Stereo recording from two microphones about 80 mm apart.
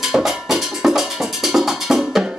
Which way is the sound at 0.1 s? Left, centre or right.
Centre.